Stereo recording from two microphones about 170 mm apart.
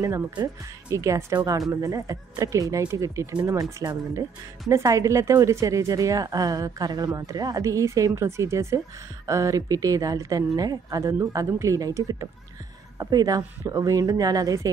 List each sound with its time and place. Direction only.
0.0 s a woman's voice: 20° right (ahead or behind)